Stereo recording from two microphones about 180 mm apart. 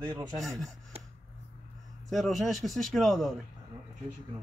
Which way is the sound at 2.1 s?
Centre (ahead or behind).